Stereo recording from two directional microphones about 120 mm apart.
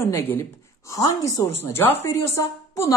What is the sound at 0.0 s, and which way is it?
A woman's voice, 20° left (ahead or behind).